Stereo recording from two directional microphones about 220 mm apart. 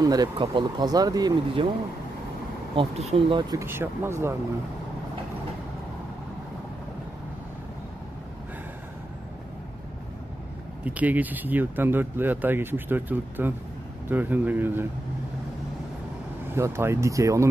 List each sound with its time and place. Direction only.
0.0 s speech: 15° right (ahead or behind)
2.7 s speech: 25° right (ahead or behind)
10.8 s speech: 5° right (ahead or behind)
16.5 s speech: 10° right (ahead or behind)